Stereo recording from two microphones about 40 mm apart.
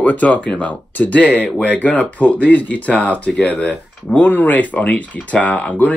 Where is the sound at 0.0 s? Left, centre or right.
Left.